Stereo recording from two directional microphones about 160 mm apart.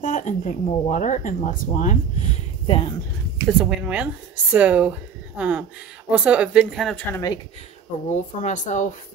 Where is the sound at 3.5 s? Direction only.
5° right (ahead or behind).